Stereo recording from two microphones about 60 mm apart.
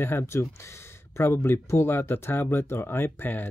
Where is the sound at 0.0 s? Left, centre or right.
Left.